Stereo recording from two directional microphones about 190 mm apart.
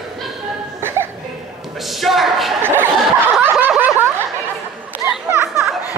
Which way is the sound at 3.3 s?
5° right (ahead or behind).